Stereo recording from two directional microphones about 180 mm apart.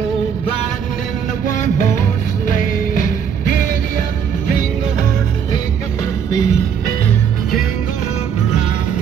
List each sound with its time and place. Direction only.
6.3 s music: 20° left (ahead or behind)